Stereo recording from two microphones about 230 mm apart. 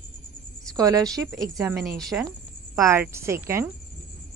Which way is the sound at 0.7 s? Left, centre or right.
Centre.